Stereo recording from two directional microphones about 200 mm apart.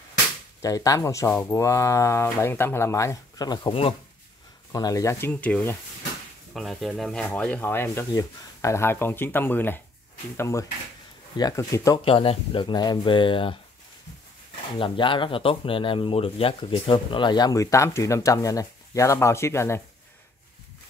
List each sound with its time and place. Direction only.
0.6 s speech: 15° left (ahead or behind)
12.0 s speech: 30° left (ahead or behind)
14.8 s speech: 25° left (ahead or behind)